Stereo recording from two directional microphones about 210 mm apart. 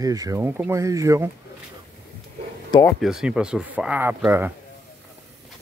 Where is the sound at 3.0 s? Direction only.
Centre (ahead or behind).